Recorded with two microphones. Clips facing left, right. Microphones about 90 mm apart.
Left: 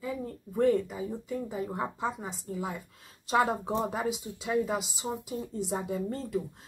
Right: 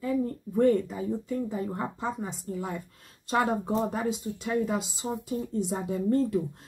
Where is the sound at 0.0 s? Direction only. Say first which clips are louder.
Right 7 dB; 5° left (ahead or behind).